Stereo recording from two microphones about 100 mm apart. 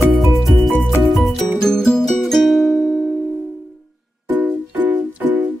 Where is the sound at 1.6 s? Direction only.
5° left (ahead or behind).